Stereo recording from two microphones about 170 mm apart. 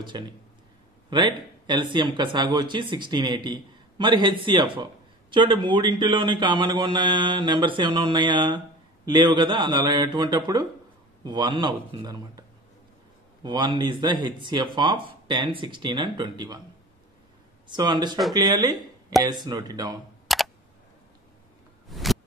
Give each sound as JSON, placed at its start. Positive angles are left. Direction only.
{"t": 0.1, "sound": "speech", "side_deg": -25}
{"t": 17.6, "sound": "speech", "side_deg": -25}
{"t": 20.3, "sound": "computer keyboard", "side_deg": 0}
{"t": 21.9, "sound": "a sound", "side_deg": 0}